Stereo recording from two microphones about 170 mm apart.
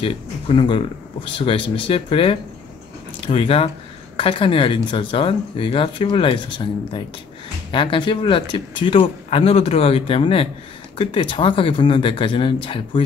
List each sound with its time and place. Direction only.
0.0 s speech: 30° left (ahead or behind)